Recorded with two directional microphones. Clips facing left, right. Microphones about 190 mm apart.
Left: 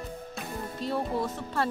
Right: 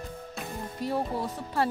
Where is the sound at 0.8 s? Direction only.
10° right (ahead or behind).